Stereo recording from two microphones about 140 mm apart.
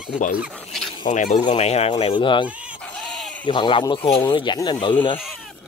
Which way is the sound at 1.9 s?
40° left (ahead or behind).